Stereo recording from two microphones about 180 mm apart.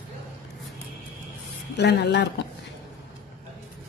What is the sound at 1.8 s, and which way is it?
Speech, 70° left (ahead or behind).